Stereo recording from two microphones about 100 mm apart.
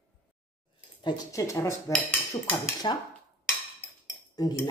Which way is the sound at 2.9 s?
50° left (ahead or behind).